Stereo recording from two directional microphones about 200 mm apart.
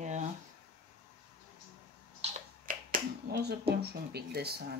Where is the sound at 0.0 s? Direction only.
35° right (ahead or behind).